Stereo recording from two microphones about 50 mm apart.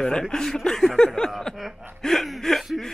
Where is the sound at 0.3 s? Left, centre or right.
Centre.